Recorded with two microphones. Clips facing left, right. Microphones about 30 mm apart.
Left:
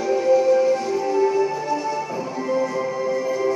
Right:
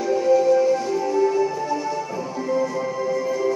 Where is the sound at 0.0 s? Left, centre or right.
Centre.